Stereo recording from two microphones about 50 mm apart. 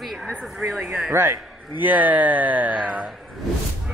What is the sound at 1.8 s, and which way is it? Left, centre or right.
Speech, right.